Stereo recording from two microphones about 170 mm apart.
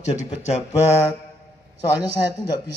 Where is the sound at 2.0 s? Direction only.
25° left (ahead or behind).